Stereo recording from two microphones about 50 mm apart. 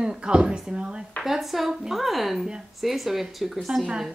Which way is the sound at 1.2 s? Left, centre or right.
Centre.